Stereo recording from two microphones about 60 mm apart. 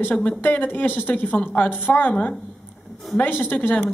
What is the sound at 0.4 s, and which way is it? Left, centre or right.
A woman's voice, left.